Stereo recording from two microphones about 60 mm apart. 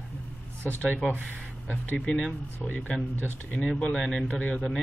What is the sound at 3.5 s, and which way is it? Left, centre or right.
Speech, centre.